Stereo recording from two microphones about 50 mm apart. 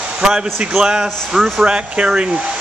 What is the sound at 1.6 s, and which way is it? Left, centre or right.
Speech, centre.